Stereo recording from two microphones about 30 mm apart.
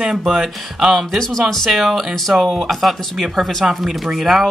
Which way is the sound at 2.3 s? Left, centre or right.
Right.